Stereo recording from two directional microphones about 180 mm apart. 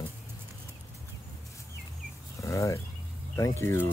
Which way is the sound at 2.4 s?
15° left (ahead or behind).